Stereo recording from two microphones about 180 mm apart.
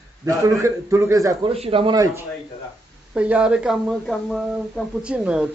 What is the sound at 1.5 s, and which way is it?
Speech, 30° right (ahead or behind).